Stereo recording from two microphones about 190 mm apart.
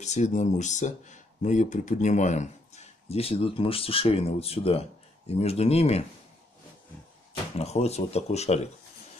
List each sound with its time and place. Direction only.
0.0 s speech: 40° left (ahead or behind)
7.5 s speech: 35° left (ahead or behind)